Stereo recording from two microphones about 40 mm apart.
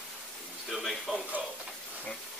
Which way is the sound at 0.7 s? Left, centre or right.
Centre.